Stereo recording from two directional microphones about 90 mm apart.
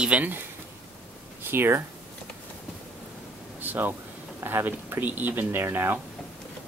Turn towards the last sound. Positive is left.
turn(degrees=-25)  # may be behind; listen again after turning